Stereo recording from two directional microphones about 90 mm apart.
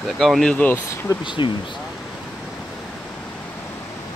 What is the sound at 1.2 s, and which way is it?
Speech, 65° left (ahead or behind).